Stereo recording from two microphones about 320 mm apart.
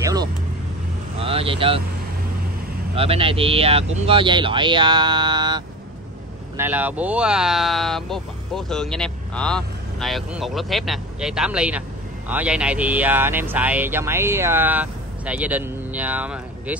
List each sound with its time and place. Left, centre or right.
0.0 s vehicle: centre
3.0 s speech: centre